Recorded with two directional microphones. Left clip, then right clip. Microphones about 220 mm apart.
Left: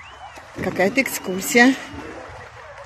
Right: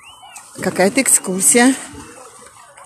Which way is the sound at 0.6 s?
25° right (ahead or behind).